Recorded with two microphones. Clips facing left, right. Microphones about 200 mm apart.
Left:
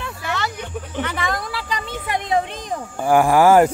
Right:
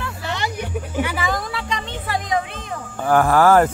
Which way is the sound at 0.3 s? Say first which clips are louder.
Even; 15° right (ahead or behind).